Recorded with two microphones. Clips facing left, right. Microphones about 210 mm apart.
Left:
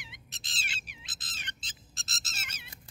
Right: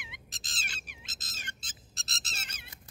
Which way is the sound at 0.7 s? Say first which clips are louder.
Right 1 dB; 50° right (ahead or behind).